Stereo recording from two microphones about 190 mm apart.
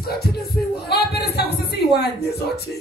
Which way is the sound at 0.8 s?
55° left (ahead or behind).